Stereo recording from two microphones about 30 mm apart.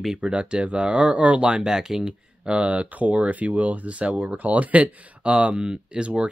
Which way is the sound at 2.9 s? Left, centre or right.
Right.